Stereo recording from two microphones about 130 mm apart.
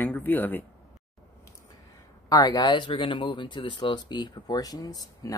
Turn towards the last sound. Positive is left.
turn(degrees=25)  # may be behind; listen again after turning